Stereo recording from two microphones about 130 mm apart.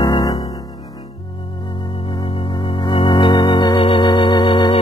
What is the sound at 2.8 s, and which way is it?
Organ, 40° left (ahead or behind).